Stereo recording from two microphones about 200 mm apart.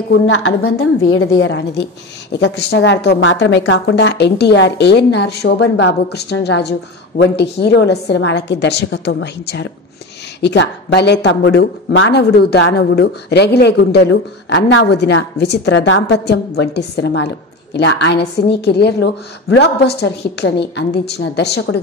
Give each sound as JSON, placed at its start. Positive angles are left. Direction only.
{"t": 0.3, "sound": "a woman's voice", "side_deg": 85}
{"t": 1.4, "sound": "speech", "side_deg": 65}